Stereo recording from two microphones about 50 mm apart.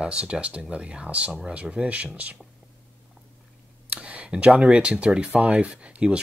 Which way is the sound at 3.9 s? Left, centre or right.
Right.